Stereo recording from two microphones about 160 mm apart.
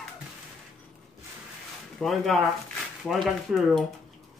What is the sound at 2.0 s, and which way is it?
Speech, centre (ahead or behind).